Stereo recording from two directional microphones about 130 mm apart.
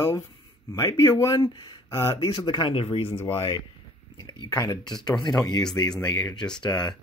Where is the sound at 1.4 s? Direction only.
35° left (ahead or behind).